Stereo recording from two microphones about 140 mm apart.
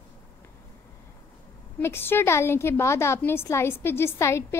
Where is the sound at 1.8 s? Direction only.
15° left (ahead or behind).